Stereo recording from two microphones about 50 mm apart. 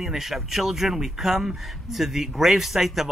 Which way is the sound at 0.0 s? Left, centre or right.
Centre.